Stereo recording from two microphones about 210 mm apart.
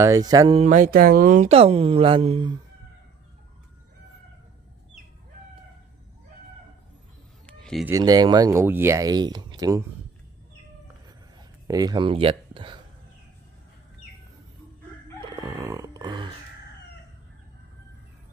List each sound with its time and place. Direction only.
0.0 s speech: 15° right (ahead or behind)
0.6 s speech: 35° right (ahead or behind)
7.4 s a sound: 5° left (ahead or behind)
7.8 s speech: 15° right (ahead or behind)
11.6 s speech: 15° right (ahead or behind)
15.1 s chicken: 20° right (ahead or behind)